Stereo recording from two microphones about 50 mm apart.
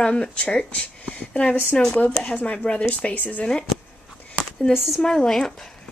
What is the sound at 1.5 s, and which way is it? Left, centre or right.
Speech, left.